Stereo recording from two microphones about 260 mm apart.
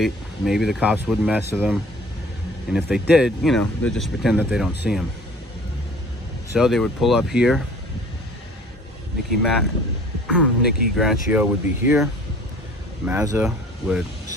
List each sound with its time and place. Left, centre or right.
0.0 s speech: centre
6.5 s speech: centre
9.4 s speech: centre